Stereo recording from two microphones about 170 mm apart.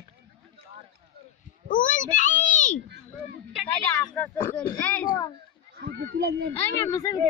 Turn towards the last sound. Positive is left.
turn(degrees=20)  # may be behind; listen again after turning